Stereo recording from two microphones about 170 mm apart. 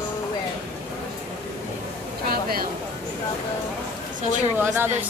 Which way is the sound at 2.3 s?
60° right (ahead or behind).